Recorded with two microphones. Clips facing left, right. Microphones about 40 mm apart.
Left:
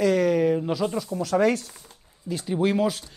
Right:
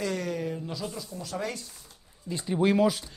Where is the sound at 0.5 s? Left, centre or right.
Left.